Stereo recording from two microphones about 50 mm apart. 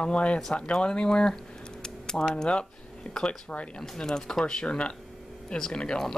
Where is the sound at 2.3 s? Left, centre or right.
Left.